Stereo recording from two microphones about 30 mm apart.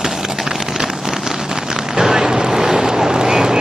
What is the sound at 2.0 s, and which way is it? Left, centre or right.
Vehicle, centre.